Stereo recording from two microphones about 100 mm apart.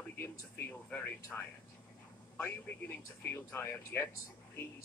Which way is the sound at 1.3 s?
10° left (ahead or behind).